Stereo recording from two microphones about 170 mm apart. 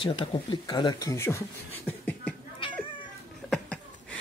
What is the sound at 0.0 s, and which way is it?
Speech, 30° left (ahead or behind).